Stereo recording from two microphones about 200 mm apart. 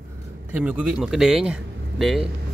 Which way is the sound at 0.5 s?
5° right (ahead or behind).